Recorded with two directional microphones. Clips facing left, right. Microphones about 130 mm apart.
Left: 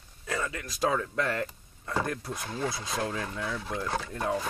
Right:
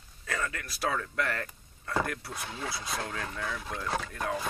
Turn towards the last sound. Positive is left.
turn(degrees=25)  # may be behind; listen again after turning